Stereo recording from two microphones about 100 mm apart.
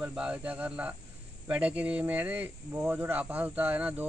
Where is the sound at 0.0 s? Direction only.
10° right (ahead or behind).